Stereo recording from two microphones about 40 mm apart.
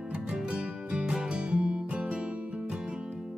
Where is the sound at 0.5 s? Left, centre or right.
Right.